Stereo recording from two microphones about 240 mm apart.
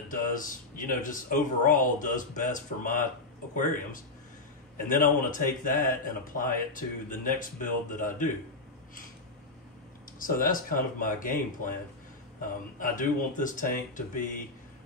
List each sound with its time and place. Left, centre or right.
0.1 s speech: left
10.1 s speech: left
12.7 s speech: left